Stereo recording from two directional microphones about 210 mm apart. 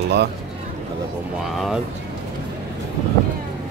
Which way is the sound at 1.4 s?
Centre (ahead or behind).